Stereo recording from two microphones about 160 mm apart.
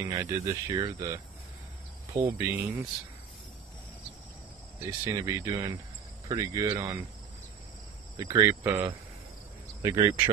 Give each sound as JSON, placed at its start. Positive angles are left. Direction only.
{"t": 0.0, "sound": "speech", "side_deg": -20}
{"t": 2.1, "sound": "speech", "side_deg": -20}
{"t": 5.0, "sound": "speech", "side_deg": -15}
{"t": 8.2, "sound": "speech", "side_deg": -20}